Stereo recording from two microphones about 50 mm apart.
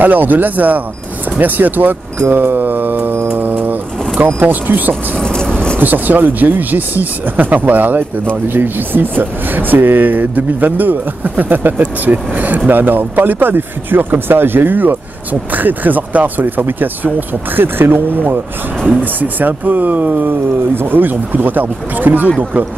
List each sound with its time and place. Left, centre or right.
0.0 s speech: right
2.3 s mantra: right
4.4 s speech: right
5.2 s speech: centre
5.8 s speech: right